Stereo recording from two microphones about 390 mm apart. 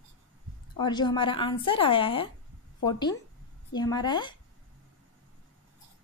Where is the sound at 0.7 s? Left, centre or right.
Centre.